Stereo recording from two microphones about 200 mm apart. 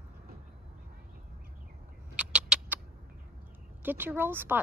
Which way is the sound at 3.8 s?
10° right (ahead or behind).